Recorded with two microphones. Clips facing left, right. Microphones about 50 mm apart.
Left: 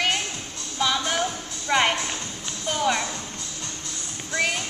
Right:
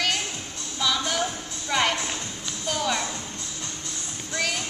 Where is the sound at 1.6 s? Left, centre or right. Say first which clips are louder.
Left 3 dB; left.